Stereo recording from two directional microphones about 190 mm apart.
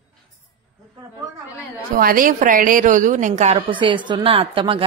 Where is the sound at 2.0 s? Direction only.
50° right (ahead or behind).